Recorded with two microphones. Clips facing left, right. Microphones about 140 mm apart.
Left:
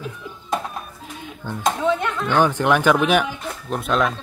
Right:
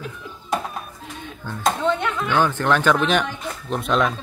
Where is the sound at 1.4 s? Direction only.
15° left (ahead or behind).